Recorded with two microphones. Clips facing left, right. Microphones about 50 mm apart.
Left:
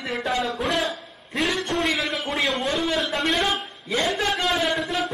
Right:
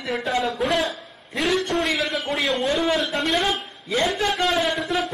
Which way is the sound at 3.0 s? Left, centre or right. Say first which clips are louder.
Right 1 dB; centre.